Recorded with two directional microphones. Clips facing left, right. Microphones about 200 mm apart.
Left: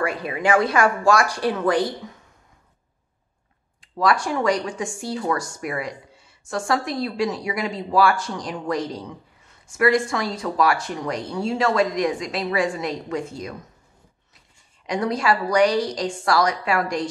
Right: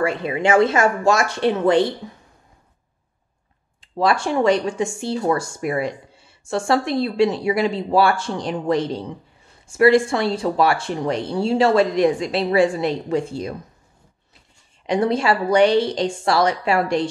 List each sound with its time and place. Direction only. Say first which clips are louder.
0.0 s speech: right 3 dB; 25° right (ahead or behind)
3.8 s speech: right 2 dB; 25° right (ahead or behind)
14.9 s speech: right 3 dB; 25° right (ahead or behind)